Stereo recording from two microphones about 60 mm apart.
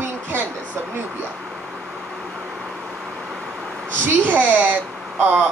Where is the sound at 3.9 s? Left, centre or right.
Right.